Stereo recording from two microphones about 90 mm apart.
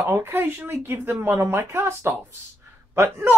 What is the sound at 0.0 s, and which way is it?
Speech, 30° right (ahead or behind).